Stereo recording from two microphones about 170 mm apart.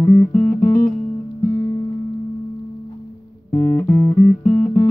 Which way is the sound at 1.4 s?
15° left (ahead or behind).